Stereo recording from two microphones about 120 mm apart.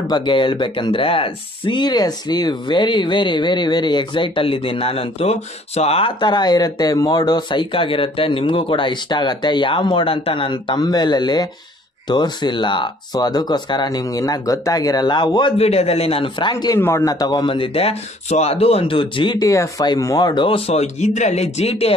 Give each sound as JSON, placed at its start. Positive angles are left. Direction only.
{"t": 0.0, "sound": "speech", "side_deg": 40}
{"t": 15.5, "sound": "a man's voice", "side_deg": 60}
{"t": 16.3, "sound": "speech", "side_deg": 40}
{"t": 16.8, "sound": "a man's voice", "side_deg": 20}
{"t": 17.1, "sound": "speech", "side_deg": 35}